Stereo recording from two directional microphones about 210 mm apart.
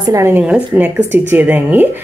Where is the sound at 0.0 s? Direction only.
15° right (ahead or behind).